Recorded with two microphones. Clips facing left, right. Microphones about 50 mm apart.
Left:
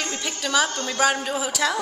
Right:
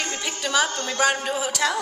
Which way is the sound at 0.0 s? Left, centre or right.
Centre.